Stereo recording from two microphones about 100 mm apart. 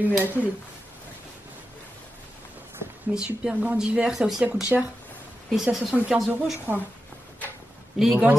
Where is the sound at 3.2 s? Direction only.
10° right (ahead or behind).